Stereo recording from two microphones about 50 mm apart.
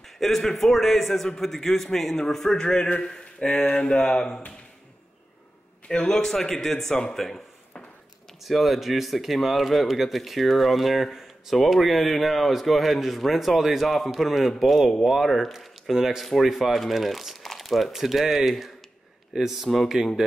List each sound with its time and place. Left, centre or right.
0.0 s a man's voice: centre
3.1 s a sound: centre
3.6 s a sound: left
4.1 s a man's voice: centre
5.9 s a man's voice: centre
7.2 s speech: centre
8.5 s speech: centre